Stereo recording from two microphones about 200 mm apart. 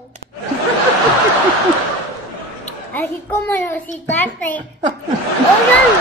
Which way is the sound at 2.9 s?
10° left (ahead or behind).